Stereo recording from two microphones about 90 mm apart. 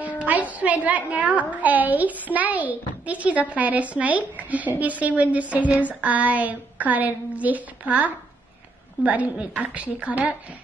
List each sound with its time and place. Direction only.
0.2 s a child's voice: 15° right (ahead or behind)